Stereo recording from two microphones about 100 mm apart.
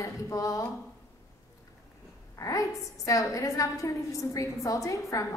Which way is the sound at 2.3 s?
35° left (ahead or behind).